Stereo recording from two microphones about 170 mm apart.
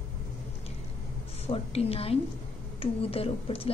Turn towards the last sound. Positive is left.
turn(degrees=35)  # may be behind; listen again after turning